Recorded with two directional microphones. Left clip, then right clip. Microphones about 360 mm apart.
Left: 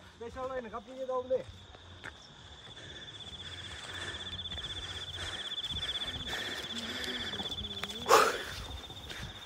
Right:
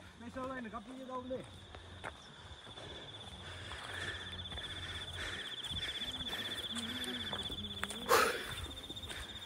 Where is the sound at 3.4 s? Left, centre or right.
Centre.